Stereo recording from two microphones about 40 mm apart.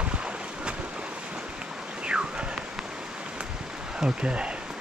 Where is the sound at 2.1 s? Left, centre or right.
Right.